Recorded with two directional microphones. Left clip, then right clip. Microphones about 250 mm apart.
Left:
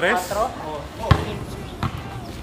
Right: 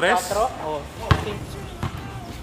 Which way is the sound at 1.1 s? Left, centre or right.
Centre.